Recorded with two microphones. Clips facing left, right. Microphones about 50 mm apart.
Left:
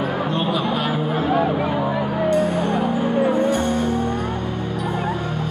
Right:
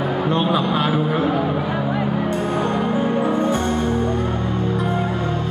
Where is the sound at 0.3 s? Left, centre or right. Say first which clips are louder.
Right 5 dB; right.